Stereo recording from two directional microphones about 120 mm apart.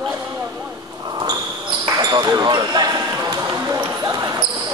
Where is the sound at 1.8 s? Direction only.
35° right (ahead or behind).